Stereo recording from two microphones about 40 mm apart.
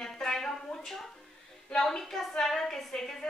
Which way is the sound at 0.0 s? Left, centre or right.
Centre.